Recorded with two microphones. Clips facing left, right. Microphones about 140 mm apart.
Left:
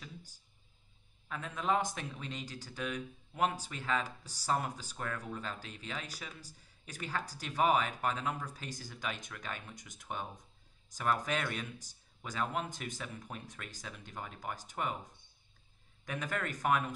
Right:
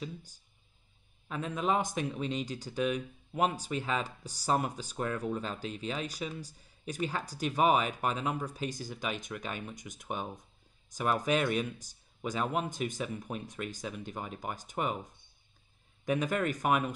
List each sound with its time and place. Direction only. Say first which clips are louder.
1.3 s speech: right 3 dB; 20° right (ahead or behind)
16.1 s speech: right 8 dB; 15° right (ahead or behind)